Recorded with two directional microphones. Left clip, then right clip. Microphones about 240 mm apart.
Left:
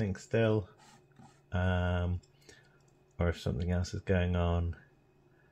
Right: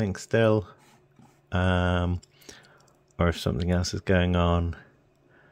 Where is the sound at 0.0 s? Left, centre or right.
Right.